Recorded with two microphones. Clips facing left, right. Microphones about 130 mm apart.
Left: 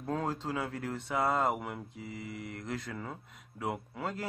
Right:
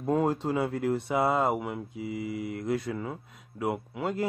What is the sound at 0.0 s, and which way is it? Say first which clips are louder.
Speech: right 8 dB; 15° right (ahead or behind).